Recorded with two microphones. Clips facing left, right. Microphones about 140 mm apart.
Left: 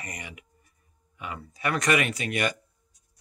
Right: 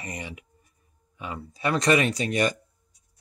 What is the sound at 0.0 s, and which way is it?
Speech, 25° right (ahead or behind).